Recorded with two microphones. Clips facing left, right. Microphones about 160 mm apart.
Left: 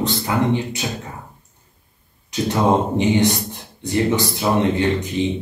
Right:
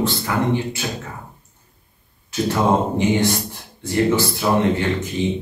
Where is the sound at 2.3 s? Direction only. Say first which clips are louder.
Left 1 dB; 20° left (ahead or behind).